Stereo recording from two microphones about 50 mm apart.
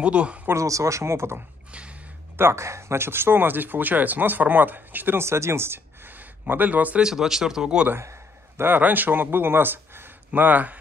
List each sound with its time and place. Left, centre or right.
0.0 s speech: right
0.6 s speech: right
1.7 s speech: right
2.3 s speech: right
5.2 s speech: right
6.0 s a sound: right
7.0 s speech: centre
8.0 s a sound: right
8.6 s speech: right